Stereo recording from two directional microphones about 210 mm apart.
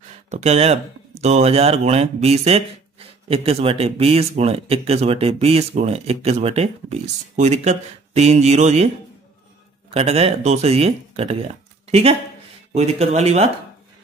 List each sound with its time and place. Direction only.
0.3 s speech: 30° right (ahead or behind)